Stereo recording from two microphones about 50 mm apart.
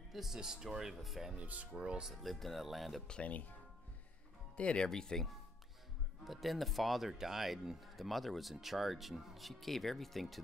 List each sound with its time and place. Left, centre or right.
0.1 s speech: centre
1.3 s speech: right
2.2 s speech: centre
3.1 s speech: left
4.6 s speech: left
6.2 s speech: centre